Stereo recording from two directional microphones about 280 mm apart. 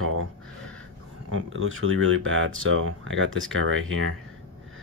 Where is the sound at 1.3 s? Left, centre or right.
Right.